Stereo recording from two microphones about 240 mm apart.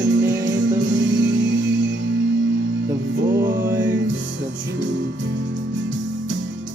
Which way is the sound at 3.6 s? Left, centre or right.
Centre.